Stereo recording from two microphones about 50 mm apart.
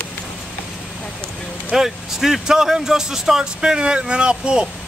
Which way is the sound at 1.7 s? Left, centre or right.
Centre.